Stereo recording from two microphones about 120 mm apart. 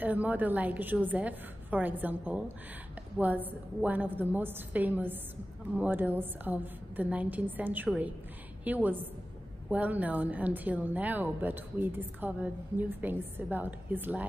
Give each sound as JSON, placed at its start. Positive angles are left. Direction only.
{"t": 0.0, "sound": "a woman's voice", "side_deg": -15}